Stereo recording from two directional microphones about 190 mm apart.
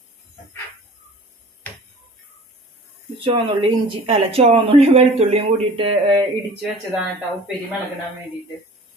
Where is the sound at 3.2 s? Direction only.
25° right (ahead or behind).